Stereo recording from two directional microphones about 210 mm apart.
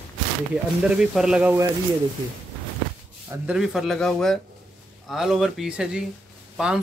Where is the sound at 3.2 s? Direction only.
5° right (ahead or behind).